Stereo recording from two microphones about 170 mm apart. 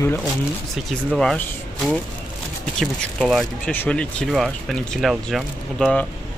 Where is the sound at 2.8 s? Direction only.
Centre (ahead or behind).